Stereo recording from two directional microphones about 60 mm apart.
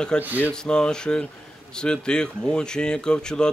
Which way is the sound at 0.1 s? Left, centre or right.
Centre.